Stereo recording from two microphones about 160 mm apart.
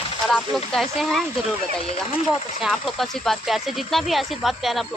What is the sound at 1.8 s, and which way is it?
Speech, 40° left (ahead or behind).